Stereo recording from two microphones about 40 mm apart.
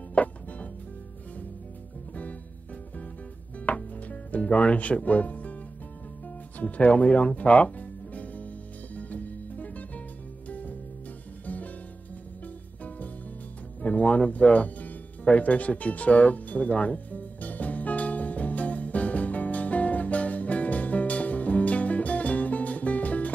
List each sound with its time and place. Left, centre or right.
0.1 s music: left
3.5 s music: left
13.8 s music: left